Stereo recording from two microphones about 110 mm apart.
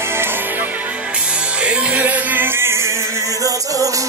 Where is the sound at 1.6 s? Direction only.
10° right (ahead or behind).